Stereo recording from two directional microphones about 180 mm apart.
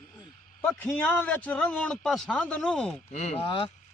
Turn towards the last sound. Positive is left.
turn(degrees=30)  # may be behind; listen again after turning